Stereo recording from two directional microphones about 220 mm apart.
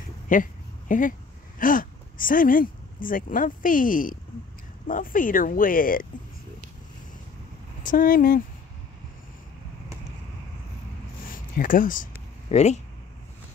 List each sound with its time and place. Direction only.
0.3 s a sound: 35° left (ahead or behind)
1.6 s speech: 40° left (ahead or behind)
7.8 s speech: 40° left (ahead or behind)
11.2 s speech: 40° left (ahead or behind)